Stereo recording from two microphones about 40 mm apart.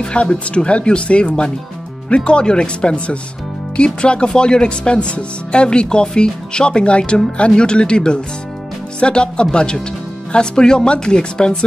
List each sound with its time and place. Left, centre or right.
0.0 s speech: left